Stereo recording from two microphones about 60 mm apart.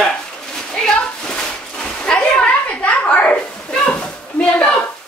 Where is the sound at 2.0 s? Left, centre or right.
Centre.